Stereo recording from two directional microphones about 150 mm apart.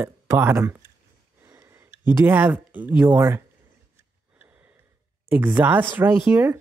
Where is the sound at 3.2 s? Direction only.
20° right (ahead or behind).